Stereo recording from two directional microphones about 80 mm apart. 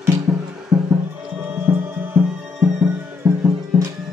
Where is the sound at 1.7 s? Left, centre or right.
Right.